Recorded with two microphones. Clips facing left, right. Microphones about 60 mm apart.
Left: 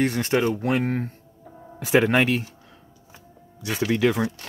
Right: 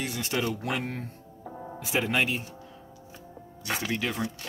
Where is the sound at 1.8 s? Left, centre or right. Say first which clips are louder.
Left 8 dB; left.